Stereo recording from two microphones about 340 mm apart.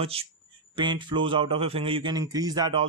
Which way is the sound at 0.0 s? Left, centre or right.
Centre.